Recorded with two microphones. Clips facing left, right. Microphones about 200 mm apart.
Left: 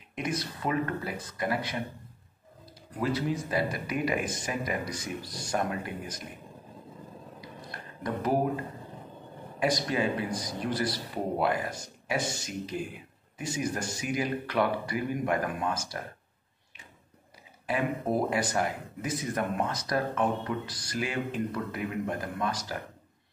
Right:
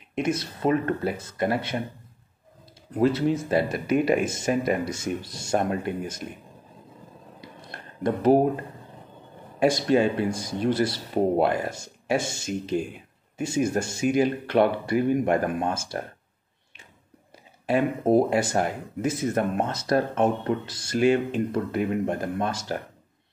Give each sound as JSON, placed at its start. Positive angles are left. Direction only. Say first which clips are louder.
{"t": 0.1, "sound": "speech", "louder": "right 7 dB", "side_deg": -25}
{"t": 3.0, "sound": "speech", "louder": "right 8 dB", "side_deg": -25}
{"t": 8.0, "sound": "speech", "louder": "right 9 dB", "side_deg": -25}
{"t": 9.6, "sound": "speech", "louder": "right 7 dB", "side_deg": -30}
{"t": 17.6, "sound": "speech", "louder": "right 7 dB", "side_deg": -25}